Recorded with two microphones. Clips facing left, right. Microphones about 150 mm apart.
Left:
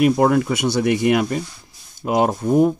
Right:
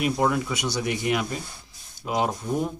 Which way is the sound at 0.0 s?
55° left (ahead or behind).